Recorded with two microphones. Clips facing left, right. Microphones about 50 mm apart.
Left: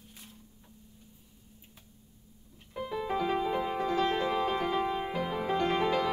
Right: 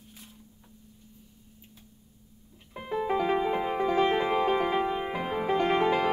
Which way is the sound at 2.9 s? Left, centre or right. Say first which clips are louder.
Right 4 dB; centre.